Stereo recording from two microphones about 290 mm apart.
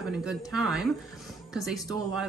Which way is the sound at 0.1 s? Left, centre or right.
Centre.